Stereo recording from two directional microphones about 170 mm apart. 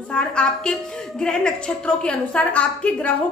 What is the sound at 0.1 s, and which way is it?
Speech, 5° left (ahead or behind).